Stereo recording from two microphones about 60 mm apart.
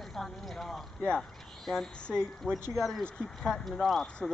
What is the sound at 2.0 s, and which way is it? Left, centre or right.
Speech, centre.